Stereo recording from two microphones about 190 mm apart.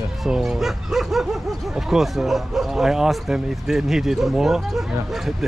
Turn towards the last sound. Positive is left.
turn(degrees=0)  # may be behind; listen again after turning